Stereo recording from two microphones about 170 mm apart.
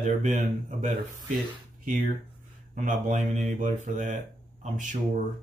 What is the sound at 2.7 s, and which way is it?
Speech, 45° right (ahead or behind).